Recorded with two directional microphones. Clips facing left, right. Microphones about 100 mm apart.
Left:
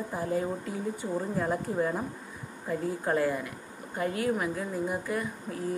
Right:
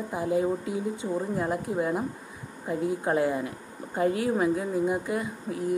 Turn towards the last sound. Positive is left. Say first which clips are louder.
# right 3 dB
turn(degrees=-20)  # may be behind; listen again after turning